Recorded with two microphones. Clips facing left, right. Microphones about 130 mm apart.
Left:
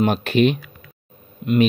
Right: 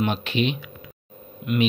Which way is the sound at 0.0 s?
45° left (ahead or behind).